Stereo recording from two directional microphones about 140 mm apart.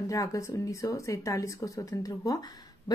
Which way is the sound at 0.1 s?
25° left (ahead or behind).